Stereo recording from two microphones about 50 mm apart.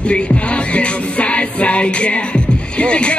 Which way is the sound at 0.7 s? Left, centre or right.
Left.